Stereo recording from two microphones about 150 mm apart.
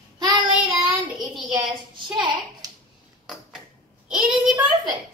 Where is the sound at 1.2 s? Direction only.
30° right (ahead or behind).